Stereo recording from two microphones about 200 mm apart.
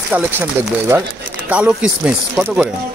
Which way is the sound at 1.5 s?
5° right (ahead or behind).